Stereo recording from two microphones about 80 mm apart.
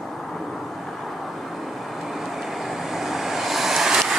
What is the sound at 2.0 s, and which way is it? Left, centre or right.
Vehicle, centre.